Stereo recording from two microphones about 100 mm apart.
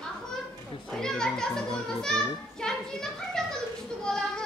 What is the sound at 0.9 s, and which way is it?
Children playing, 5° left (ahead or behind).